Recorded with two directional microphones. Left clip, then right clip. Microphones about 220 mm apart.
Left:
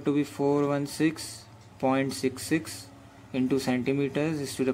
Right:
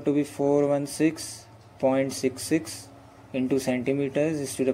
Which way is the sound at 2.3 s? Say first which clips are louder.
Right 2 dB; 25° left (ahead or behind).